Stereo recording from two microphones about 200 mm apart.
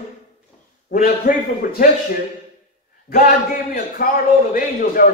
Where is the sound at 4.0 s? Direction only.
45° left (ahead or behind).